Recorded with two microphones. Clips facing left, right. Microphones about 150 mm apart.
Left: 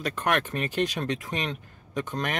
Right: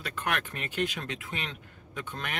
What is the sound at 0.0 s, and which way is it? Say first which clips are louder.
Speech: left 6 dB; 40° left (ahead or behind).